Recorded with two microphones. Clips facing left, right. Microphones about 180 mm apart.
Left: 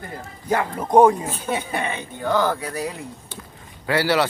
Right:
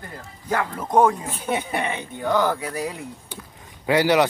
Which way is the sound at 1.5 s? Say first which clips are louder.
Right 1 dB; 20° right (ahead or behind).